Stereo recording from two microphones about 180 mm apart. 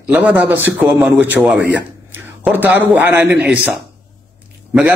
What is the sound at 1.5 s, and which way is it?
Speech, 75° right (ahead or behind).